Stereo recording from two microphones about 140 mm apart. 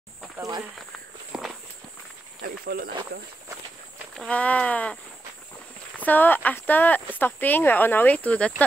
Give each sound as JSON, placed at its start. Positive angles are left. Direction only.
{"t": 0.4, "sound": "speech", "side_deg": -25}
{"t": 1.3, "sound": "walk", "side_deg": -5}
{"t": 2.4, "sound": "speech", "side_deg": -90}
{"t": 4.3, "sound": "speech", "side_deg": 10}
{"t": 5.9, "sound": "speech", "side_deg": 15}